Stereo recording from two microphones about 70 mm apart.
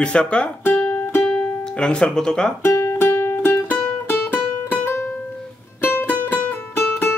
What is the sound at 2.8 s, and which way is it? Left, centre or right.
Music, left.